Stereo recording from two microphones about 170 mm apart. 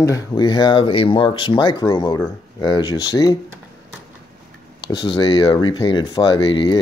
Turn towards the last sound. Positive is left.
turn(degrees=25)  # may be behind; listen again after turning